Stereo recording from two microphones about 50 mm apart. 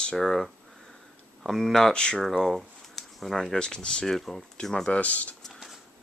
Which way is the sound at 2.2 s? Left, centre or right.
Centre.